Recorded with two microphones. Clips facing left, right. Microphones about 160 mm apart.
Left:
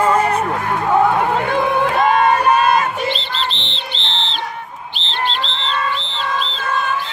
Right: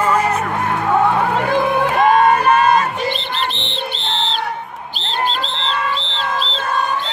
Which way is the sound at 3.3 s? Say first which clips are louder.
Right 1 dB; 55° right (ahead or behind).